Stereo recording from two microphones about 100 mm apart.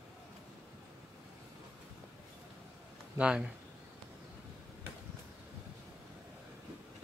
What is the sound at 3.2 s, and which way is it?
Speech, 10° right (ahead or behind).